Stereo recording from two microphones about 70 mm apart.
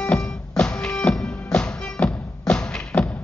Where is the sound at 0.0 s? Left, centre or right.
Centre.